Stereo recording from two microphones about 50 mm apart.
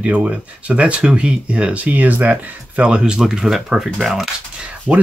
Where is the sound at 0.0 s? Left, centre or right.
Right.